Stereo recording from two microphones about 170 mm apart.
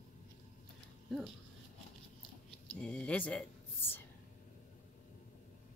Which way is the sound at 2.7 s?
5° left (ahead or behind).